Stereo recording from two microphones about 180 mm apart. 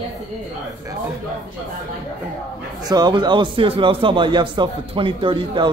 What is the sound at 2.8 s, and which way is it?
A man's voice, 20° right (ahead or behind).